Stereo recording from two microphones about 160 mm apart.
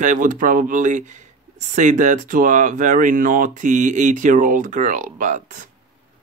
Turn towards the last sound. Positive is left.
turn(degrees=-50)  # may be behind; listen again after turning